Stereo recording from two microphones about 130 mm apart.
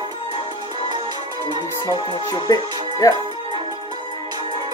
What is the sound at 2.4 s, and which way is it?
Speech, 30° left (ahead or behind).